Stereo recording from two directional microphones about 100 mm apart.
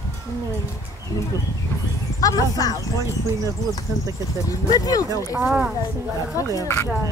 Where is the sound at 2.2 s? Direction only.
40° left (ahead or behind).